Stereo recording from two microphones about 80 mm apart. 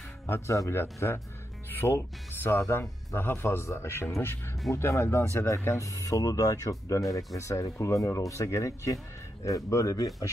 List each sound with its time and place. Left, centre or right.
0.3 s speech: left